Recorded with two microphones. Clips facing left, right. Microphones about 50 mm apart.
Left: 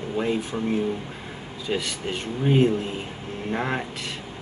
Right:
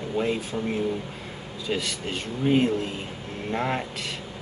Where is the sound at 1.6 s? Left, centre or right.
Centre.